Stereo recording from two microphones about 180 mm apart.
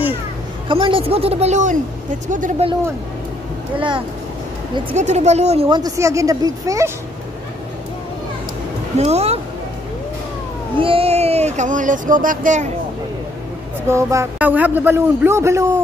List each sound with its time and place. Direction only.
0.7 s speech: 30° right (ahead or behind); by 2.5 s 45° right (ahead or behind)
3.7 s speech: 25° right (ahead or behind)
4.9 s speech: 40° right (ahead or behind)
5.8 s speech: 20° right (ahead or behind)
8.9 s speech: 35° right (ahead or behind)
10.8 s speech: 30° right (ahead or behind)
13.8 s a man's voice: 15° right (ahead or behind)